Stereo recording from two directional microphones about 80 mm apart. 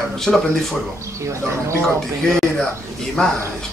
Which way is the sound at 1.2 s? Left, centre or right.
Right.